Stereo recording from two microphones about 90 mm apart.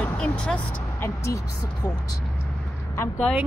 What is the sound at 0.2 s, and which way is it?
Speech, 10° left (ahead or behind).